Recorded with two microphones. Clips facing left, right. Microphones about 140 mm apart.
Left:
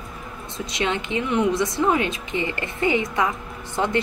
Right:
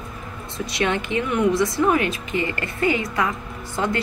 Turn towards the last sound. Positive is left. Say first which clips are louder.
# left 1 dB
turn(degrees=20)  # may be behind; listen again after turning